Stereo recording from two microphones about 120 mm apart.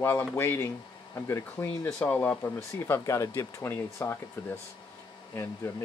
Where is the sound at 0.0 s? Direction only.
20° left (ahead or behind).